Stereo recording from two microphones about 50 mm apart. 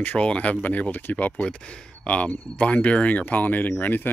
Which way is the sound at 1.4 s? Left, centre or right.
Centre.